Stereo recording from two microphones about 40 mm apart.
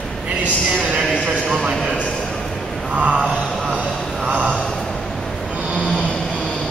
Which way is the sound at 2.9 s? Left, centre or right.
Right.